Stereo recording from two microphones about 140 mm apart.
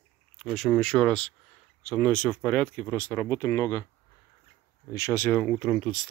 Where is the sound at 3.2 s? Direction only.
20° left (ahead or behind).